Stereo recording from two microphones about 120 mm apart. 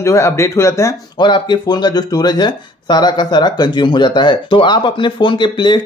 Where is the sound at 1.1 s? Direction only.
40° left (ahead or behind).